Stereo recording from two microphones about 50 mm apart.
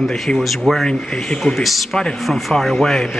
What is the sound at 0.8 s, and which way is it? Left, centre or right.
Speech, centre.